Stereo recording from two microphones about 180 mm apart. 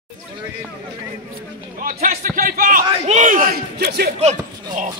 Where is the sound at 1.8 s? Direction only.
50° right (ahead or behind).